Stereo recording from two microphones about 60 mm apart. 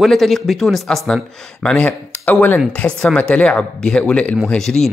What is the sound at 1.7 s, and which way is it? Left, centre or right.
Speech, left.